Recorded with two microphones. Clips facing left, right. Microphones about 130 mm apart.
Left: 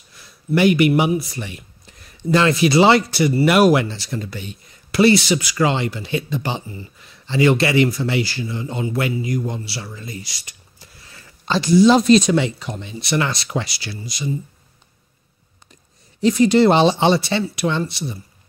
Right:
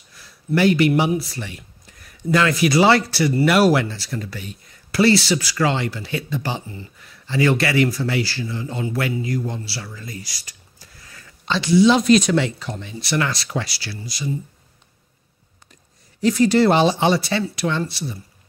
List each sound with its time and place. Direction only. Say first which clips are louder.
0.6 s speech: left 1 dB; 15° left (ahead or behind)
11.4 s speech: left 2 dB; 40° left (ahead or behind)
12.1 s speech: left 2 dB; 20° left (ahead or behind)
16.2 s speech: left 2 dB; 20° left (ahead or behind)